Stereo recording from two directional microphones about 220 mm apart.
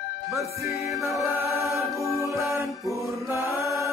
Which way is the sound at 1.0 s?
15° right (ahead or behind).